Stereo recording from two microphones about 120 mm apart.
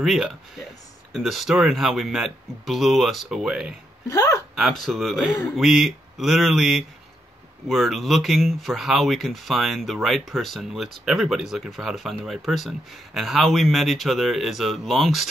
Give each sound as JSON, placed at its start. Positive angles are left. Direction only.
{"t": 0.0, "sound": "speech", "side_deg": 0}
{"t": 4.1, "sound": "a sound", "side_deg": 30}
{"t": 4.6, "sound": "speech", "side_deg": 0}